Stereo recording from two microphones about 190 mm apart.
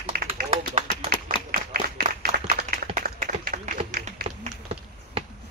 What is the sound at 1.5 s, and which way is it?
Applause, 50° right (ahead or behind).